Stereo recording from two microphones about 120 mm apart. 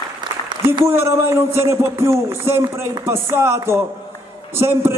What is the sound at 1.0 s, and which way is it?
Speech, 20° right (ahead or behind).